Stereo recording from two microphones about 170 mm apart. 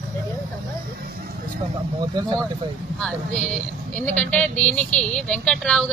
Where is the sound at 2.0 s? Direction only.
25° right (ahead or behind).